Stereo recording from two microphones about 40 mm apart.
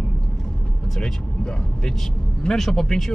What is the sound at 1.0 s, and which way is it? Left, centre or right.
Speech, centre.